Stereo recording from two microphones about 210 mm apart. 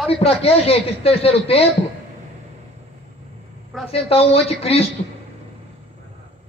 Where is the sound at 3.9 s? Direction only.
30° left (ahead or behind).